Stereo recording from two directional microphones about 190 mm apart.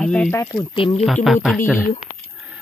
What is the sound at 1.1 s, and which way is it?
Speech, centre (ahead or behind).